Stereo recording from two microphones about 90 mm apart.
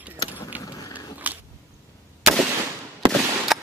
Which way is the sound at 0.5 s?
20° right (ahead or behind).